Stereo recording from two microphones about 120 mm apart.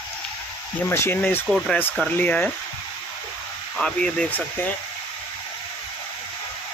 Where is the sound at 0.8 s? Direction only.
20° left (ahead or behind).